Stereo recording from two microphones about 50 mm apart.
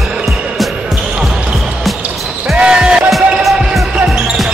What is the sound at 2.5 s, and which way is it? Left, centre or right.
Music, centre.